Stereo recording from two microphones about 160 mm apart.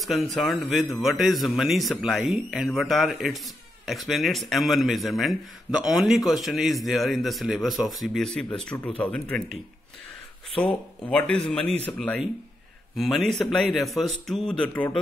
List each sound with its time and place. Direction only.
0.0 s a man's voice: centre (ahead or behind)
11.0 s a man's voice: 5° left (ahead or behind)